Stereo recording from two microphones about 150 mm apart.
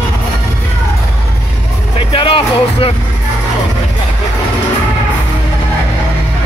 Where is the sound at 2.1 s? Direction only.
35° left (ahead or behind).